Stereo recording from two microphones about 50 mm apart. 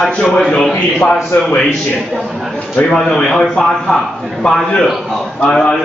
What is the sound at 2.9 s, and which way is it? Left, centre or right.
A man's voice, centre.